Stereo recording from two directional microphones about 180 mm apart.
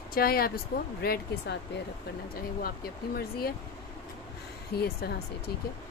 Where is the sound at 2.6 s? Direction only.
55° left (ahead or behind).